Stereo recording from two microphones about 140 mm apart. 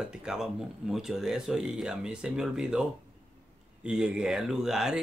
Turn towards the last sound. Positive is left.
turn(degrees=-5)  # may be behind; listen again after turning